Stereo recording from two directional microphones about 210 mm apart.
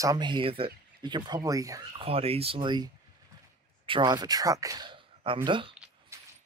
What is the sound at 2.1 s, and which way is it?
Speech, 30° right (ahead or behind).